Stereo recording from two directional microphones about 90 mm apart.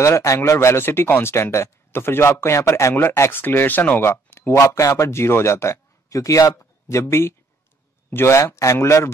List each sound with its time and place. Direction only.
0.0 s speech: 35° left (ahead or behind)